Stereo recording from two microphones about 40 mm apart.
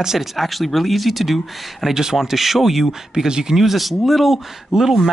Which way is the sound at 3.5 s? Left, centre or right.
Centre.